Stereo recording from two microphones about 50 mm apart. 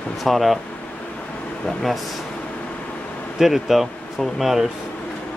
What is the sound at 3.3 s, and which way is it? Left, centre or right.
Speech, centre.